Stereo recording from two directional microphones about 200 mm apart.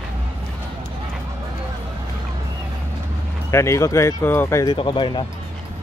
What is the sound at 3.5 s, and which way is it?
Speech, 15° left (ahead or behind).